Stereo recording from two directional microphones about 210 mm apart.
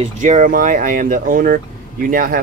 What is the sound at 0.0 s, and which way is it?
Speech, 35° right (ahead or behind).